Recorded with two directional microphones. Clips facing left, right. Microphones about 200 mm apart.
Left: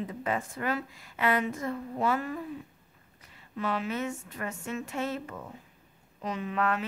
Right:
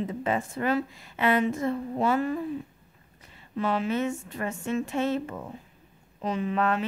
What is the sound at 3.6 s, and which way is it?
A woman's voice, 30° right (ahead or behind).